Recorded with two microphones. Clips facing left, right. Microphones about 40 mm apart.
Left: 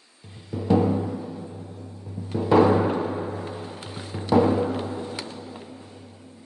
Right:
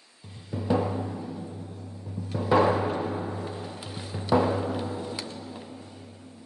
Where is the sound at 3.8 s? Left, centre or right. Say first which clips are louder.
Left 2 dB; left.